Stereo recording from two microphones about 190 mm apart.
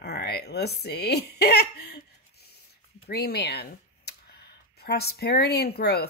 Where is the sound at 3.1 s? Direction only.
55° left (ahead or behind).